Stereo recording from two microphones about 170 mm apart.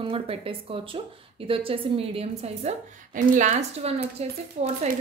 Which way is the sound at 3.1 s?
45° right (ahead or behind).